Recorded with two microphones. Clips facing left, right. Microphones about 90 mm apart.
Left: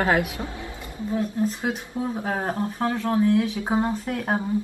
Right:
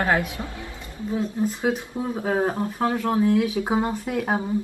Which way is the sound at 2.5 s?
15° right (ahead or behind).